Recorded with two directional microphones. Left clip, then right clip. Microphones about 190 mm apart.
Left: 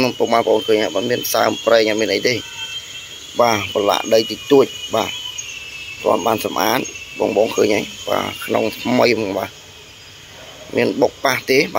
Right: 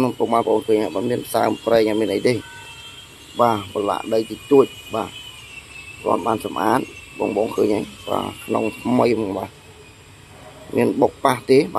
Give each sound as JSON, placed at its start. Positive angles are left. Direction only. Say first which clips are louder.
{"t": 0.0, "sound": "speech", "louder": "left 3 dB", "side_deg": -5}
{"t": 3.3, "sound": "speech", "louder": "left 3 dB", "side_deg": 5}
{"t": 6.0, "sound": "cricket", "louder": "left 4 dB", "side_deg": 10}
{"t": 6.4, "sound": "speech", "louder": "left 2 dB", "side_deg": 5}
{"t": 7.6, "sound": "speech", "louder": "left 3 dB", "side_deg": -5}
{"t": 10.7, "sound": "speech", "louder": "left 1 dB", "side_deg": -10}